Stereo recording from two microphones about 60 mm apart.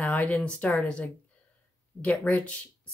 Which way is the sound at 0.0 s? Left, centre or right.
Left.